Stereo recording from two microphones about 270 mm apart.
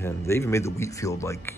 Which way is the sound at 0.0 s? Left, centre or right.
Centre.